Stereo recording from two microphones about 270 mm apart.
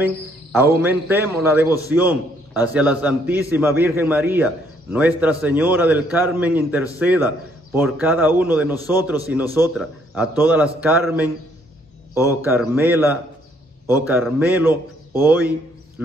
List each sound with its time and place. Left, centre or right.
0.0 s a man's voice: centre
12.4 s a man's voice: centre